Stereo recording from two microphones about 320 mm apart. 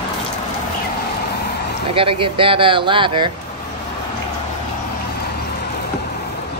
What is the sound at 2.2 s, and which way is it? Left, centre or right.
Speech, centre.